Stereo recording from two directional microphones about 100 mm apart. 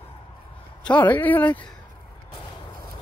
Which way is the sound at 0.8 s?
15° left (ahead or behind).